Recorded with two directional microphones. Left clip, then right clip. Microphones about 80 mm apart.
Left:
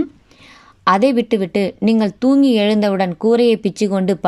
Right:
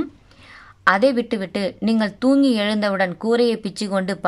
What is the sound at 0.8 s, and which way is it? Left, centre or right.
Speech, left.